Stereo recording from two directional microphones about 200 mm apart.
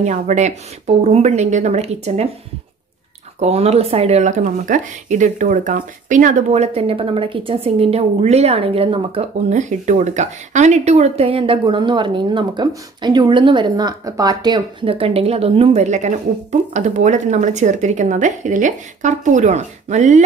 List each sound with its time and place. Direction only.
0.0 s a woman's voice: 35° right (ahead or behind)
3.3 s a woman's voice: 30° right (ahead or behind)